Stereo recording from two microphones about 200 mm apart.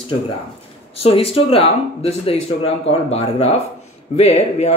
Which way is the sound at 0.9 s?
30° left (ahead or behind).